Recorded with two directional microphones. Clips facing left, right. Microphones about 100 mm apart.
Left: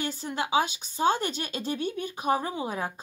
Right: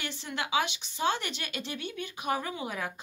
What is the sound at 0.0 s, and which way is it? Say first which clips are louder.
A woman's voice: left 5 dB; 40° left (ahead or behind).